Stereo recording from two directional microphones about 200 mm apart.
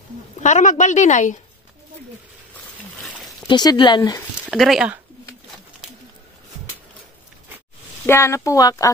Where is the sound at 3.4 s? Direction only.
20° left (ahead or behind).